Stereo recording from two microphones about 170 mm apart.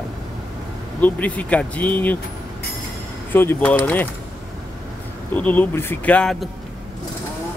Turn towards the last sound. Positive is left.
turn(degrees=5)  # may be behind; listen again after turning